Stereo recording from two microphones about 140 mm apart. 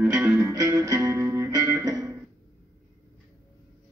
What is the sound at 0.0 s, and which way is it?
Music, 15° right (ahead or behind).